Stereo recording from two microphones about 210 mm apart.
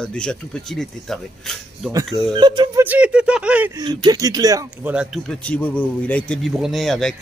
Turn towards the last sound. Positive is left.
turn(degrees=0)  # may be behind; listen again after turning